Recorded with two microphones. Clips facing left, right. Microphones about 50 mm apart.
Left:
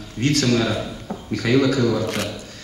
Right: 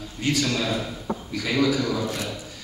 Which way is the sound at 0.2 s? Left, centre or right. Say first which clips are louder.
Left 5 dB; left.